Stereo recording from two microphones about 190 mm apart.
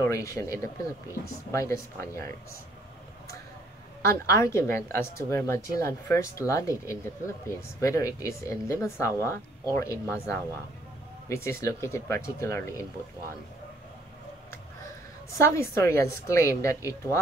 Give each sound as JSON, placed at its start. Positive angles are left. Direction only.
{"t": 0.0, "sound": "a woman's voice", "side_deg": 15}
{"t": 4.0, "sound": "a woman's voice", "side_deg": 15}
{"t": 15.3, "sound": "a woman's voice", "side_deg": 15}